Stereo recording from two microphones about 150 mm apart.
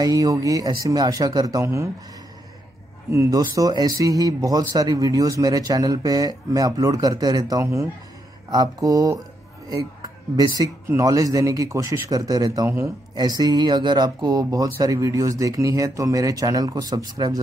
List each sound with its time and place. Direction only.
0.0 s speech: 25° right (ahead or behind)
3.1 s speech: 20° right (ahead or behind)